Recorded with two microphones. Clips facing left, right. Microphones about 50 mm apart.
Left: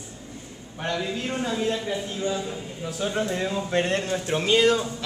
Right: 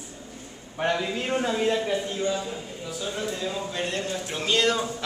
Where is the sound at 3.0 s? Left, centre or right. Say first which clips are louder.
Left 5 dB; left.